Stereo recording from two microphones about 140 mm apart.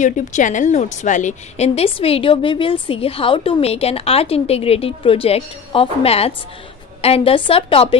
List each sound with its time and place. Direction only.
0.0 s a woman's voice: 60° left (ahead or behind); by 8.0 s 40° left (ahead or behind)